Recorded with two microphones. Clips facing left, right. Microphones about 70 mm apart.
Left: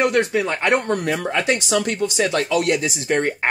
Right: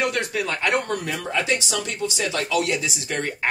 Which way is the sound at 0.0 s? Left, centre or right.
Left.